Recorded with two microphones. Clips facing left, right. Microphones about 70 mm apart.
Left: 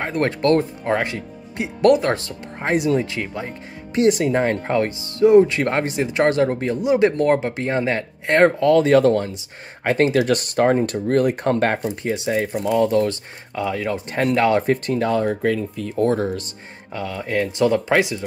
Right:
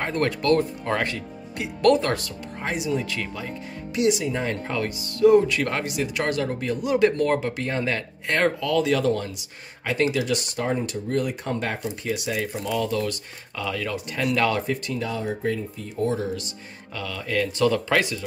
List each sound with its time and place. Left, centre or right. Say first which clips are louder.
0.2 s speech: left 4 dB; left
2.7 s speech: left 8 dB; left
3.1 s speech: left 3 dB; left
6.8 s speech: left 3 dB; left
9.8 s speech: left 6 dB; left
11.8 s speech: left 5 dB; left
14.7 s speech: left 8 dB; left
16.9 s speech: left 4 dB; left